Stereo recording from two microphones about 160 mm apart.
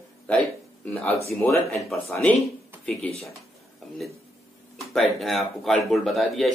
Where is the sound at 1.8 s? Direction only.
Centre (ahead or behind).